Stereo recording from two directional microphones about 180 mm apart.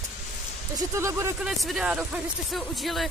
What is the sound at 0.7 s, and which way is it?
Speech, 15° right (ahead or behind).